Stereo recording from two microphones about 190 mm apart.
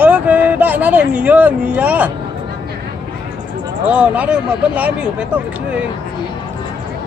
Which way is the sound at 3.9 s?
5° right (ahead or behind).